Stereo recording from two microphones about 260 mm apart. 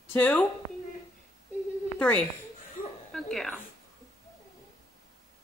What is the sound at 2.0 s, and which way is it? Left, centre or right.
Speech, centre.